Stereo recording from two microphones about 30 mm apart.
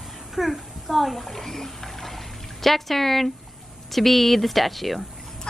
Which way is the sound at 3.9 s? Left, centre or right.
Centre.